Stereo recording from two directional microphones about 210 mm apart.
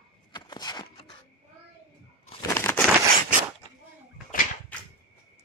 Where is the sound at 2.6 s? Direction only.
10° left (ahead or behind).